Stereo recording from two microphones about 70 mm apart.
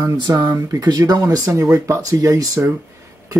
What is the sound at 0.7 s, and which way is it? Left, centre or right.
Speech, right.